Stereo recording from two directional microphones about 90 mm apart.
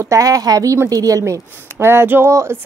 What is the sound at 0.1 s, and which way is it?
Speech, 40° right (ahead or behind).